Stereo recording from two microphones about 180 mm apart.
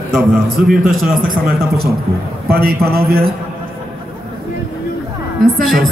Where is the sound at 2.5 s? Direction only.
60° right (ahead or behind).